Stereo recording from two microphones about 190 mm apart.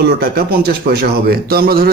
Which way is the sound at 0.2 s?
55° right (ahead or behind).